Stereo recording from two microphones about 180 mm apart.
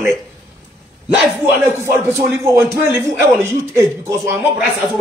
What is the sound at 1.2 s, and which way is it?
A man's voice, 10° right (ahead or behind).